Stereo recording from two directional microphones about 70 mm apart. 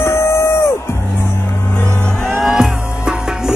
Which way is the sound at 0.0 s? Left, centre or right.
Left.